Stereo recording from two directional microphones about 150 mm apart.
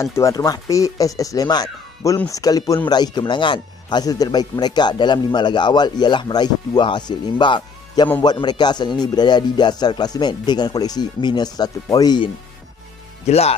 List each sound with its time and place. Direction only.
0.0 s a man's voice: 20° left (ahead or behind)
13.3 s speech: 45° left (ahead or behind)